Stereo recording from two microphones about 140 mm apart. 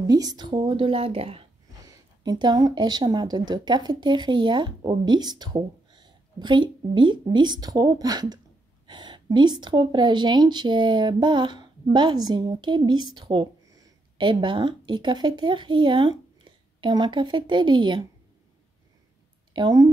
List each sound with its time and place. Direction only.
0.0 s speech: 25° right (ahead or behind); by 1.4 s 40° right (ahead or behind)
1.9 s speech: 30° right (ahead or behind)
19.5 s a woman's voice: 30° right (ahead or behind)